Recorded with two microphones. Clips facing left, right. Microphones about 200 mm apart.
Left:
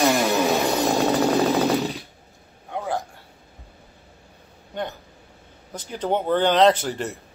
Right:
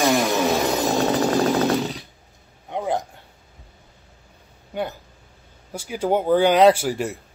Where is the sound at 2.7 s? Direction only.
20° right (ahead or behind).